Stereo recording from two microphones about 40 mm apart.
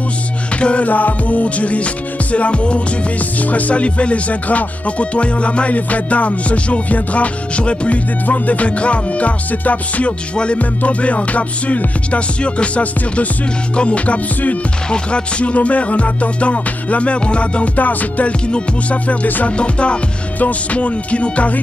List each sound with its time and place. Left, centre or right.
0.6 s music: left
0.8 s music: left
3.4 s music: left
10.3 s music: left
10.6 s music: left
14.9 s music: left
17.7 s music: left
19.2 s music: left
19.5 s music: left